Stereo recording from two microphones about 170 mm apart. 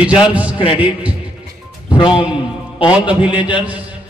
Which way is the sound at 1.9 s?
30° left (ahead or behind).